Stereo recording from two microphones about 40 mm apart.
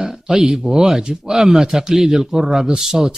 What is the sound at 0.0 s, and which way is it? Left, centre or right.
Speech, centre.